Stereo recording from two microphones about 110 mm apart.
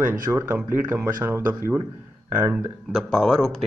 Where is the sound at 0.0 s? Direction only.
20° right (ahead or behind).